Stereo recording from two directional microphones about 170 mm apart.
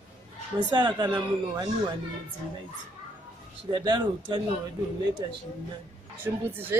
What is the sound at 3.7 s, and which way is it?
Speech, 25° right (ahead or behind).